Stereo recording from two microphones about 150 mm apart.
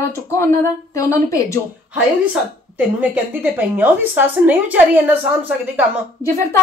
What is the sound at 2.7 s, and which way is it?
A woman's voice, 10° right (ahead or behind).